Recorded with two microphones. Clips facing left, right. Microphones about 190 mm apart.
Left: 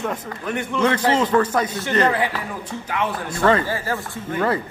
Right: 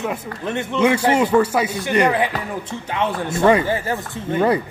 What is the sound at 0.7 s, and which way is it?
Speech, 10° right (ahead or behind).